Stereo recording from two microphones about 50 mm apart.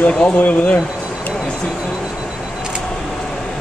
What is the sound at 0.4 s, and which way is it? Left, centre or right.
Speech, left.